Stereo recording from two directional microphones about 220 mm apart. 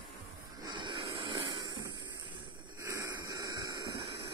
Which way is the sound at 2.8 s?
15° right (ahead or behind).